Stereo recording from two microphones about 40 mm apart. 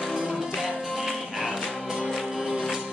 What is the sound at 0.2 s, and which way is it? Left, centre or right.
Music, centre.